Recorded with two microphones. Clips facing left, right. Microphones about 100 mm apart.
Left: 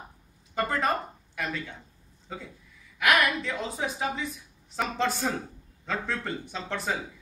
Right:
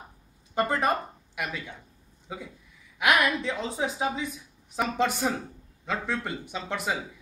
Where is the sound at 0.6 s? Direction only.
20° right (ahead or behind).